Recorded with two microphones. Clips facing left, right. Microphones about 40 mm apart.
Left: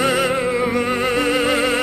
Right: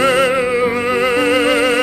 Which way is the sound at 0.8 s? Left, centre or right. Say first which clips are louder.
Right 4 dB; right.